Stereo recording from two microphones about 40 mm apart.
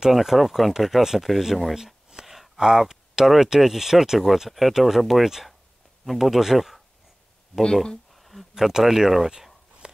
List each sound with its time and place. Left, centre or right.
0.1 s speech: centre
4.5 s speech: centre
7.7 s speech: centre
8.1 s a sound: centre
8.5 s speech: centre
9.8 s a sound: right